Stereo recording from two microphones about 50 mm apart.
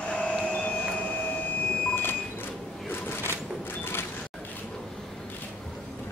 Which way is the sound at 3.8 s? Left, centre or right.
Left.